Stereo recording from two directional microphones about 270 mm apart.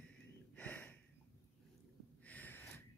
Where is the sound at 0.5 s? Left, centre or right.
Centre.